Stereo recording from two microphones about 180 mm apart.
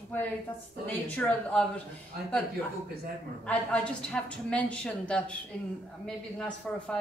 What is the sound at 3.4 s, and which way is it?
A man's voice, 5° left (ahead or behind).